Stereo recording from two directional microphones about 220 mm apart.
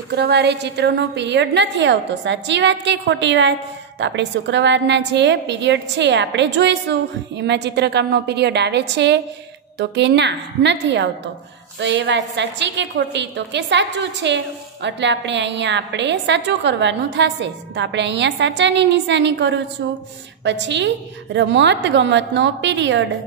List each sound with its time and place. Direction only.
0.1 s a woman's voice: 50° right (ahead or behind)